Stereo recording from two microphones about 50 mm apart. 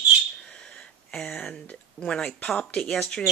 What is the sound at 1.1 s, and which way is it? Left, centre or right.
Speech, centre.